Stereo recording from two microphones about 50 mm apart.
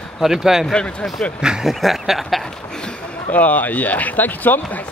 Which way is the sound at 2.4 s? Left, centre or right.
Centre.